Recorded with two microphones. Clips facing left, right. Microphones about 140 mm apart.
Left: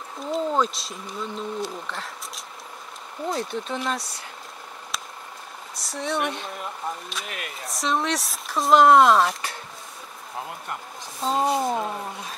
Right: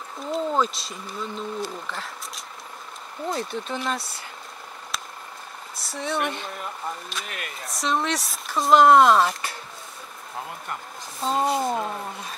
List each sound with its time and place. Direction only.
0.2 s speech: centre (ahead or behind)
4.9 s vehicle: centre (ahead or behind)
5.8 s speech: centre (ahead or behind)
10.7 s speech: centre (ahead or behind)